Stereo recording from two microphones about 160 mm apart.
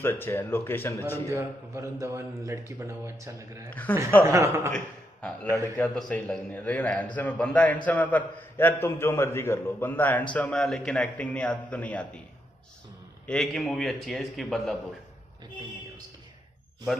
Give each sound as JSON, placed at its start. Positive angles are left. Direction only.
{"t": 0.0, "sound": "a man's voice", "side_deg": 15}
{"t": 1.3, "sound": "a man's voice", "side_deg": -20}
{"t": 3.7, "sound": "a man's voice", "side_deg": 10}
{"t": 4.2, "sound": "a man's voice", "side_deg": -15}
{"t": 4.7, "sound": "a man's voice", "side_deg": 10}
{"t": 13.3, "sound": "a man's voice", "side_deg": 5}